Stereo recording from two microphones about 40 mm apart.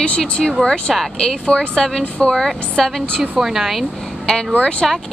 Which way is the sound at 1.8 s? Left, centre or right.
Centre.